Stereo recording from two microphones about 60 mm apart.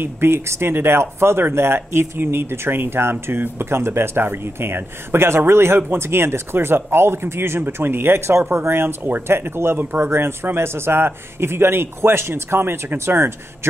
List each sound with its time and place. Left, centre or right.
0.0 s speech: right